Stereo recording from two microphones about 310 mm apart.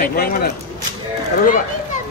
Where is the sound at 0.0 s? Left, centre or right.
Left.